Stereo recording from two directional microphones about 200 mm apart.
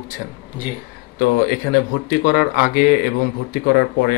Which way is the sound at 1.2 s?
45° left (ahead or behind).